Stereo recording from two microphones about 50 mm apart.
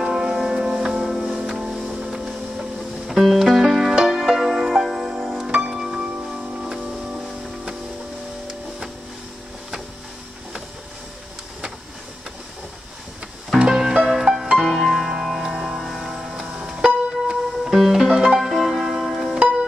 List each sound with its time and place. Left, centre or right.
0.0 s music: centre
2.0 s boat: centre
3.1 s music: centre
5.5 s music: right
5.8 s music: centre
8.5 s music: centre
13.6 s music: centre
15.8 s tick-tock: centre
17.3 s music: centre
19.0 s music: centre
19.3 s music: right